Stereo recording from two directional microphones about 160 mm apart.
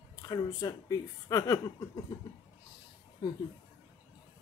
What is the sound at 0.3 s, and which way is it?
A woman's voice, 25° left (ahead or behind).